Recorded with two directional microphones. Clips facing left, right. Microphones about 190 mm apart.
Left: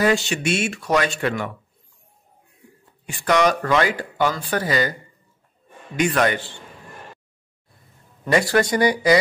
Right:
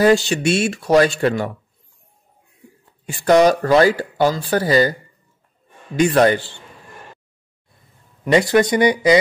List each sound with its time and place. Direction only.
0.0 s speech: 35° right (ahead or behind)
3.1 s speech: 35° right (ahead or behind)
5.9 s speech: 30° right (ahead or behind)
8.3 s speech: 20° right (ahead or behind)